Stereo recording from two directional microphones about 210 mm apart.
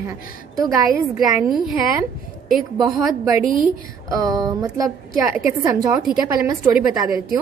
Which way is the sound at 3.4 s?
40° right (ahead or behind).